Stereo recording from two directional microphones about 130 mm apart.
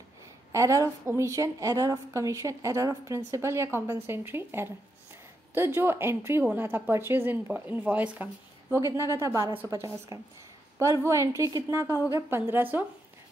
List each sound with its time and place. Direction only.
0.5 s a woman's voice: 25° right (ahead or behind)